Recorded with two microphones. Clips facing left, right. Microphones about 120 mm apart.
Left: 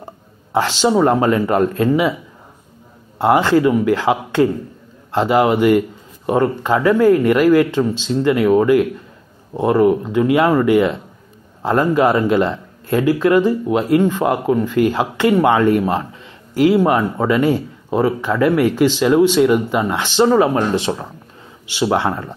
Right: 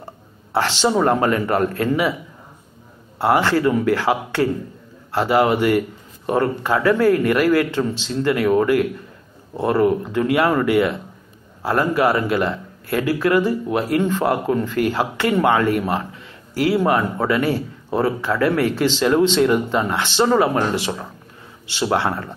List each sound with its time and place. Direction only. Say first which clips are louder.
0.0 s speech: left 2 dB; 15° left (ahead or behind)
3.2 s speech: left 4 dB; 20° left (ahead or behind)